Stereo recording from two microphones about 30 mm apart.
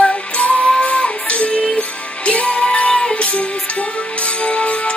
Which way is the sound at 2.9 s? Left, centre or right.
Left.